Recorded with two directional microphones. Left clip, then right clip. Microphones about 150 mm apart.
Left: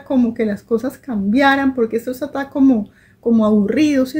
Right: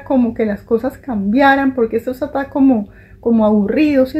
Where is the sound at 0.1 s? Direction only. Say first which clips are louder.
Right 2 dB; 35° left (ahead or behind).